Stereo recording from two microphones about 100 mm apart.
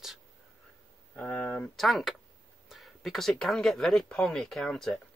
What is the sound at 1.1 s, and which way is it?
Speech, 15° left (ahead or behind).